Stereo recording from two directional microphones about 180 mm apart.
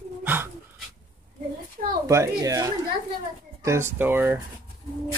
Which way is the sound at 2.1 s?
15° right (ahead or behind).